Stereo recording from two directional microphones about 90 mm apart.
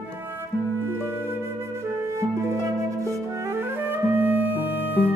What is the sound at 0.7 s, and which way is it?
Music, 25° right (ahead or behind).